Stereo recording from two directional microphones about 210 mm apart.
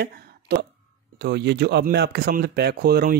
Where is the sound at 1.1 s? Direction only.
55° right (ahead or behind).